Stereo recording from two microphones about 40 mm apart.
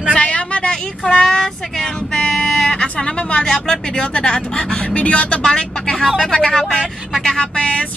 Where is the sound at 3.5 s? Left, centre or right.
Centre.